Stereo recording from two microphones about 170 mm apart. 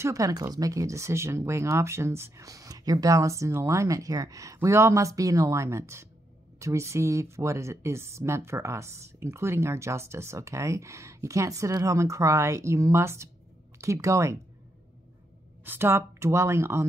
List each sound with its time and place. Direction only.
0.0 s speech: 20° right (ahead or behind)
15.6 s speech: 15° right (ahead or behind)